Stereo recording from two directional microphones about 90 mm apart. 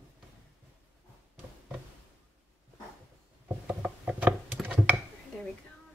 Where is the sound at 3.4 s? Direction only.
15° right (ahead or behind).